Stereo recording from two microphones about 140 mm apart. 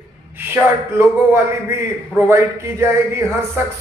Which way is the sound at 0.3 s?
15° right (ahead or behind).